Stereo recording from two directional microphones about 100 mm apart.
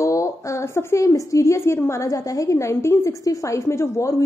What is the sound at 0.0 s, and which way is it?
A woman's voice, 30° left (ahead or behind).